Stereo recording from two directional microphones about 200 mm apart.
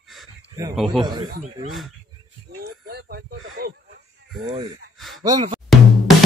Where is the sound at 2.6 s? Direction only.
55° right (ahead or behind).